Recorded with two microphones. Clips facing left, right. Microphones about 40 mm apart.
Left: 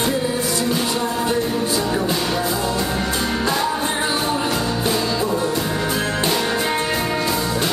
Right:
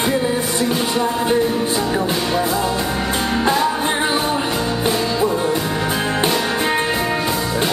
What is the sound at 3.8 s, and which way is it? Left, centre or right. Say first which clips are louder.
Music: right 3 dB; centre.